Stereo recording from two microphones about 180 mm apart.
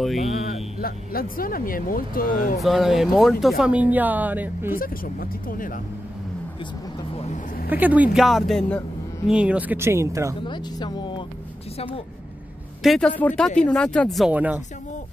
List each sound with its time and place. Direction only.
0.2 s speech: 40° left (ahead or behind)
0.7 s speech: 55° left (ahead or behind)
2.6 s speech: centre (ahead or behind)
4.7 s speech: 55° left (ahead or behind)
7.7 s speech: 10° right (ahead or behind)
9.3 s speech: 5° right (ahead or behind)
10.4 s speech: 25° left (ahead or behind)
12.8 s speech: centre (ahead or behind)